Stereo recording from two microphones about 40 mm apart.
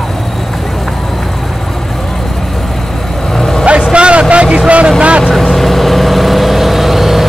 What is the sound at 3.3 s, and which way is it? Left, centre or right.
Vehicle, centre.